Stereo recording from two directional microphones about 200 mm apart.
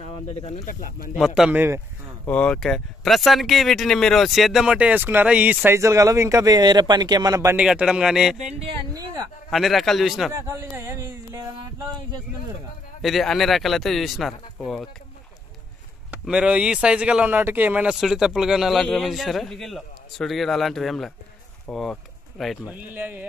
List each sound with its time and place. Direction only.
0.0 s speech: 30° left (ahead or behind)
0.7 s speech: 45° left (ahead or behind)
1.1 s speech: centre (ahead or behind)
2.2 s speech: 5° left (ahead or behind); by 7.6 s 15° right (ahead or behind)
7.6 s speech: 5° right (ahead or behind)
8.9 s a sound: 20° right (ahead or behind)
9.5 s speech: centre (ahead or behind)
10.3 s a sound: 15° right (ahead or behind)
13.0 s speech: centre (ahead or behind)
16.1 s speech: 5° right (ahead or behind)